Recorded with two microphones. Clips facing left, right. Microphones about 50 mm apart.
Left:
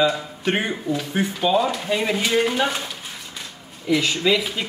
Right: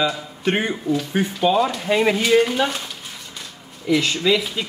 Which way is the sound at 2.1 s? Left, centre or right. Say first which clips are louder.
Right 3 dB; centre.